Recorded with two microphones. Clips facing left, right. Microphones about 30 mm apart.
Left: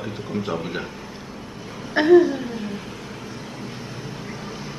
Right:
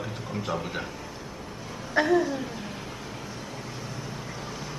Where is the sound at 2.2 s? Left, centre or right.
Centre.